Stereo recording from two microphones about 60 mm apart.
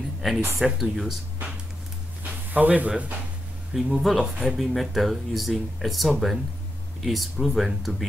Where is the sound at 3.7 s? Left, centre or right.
Centre.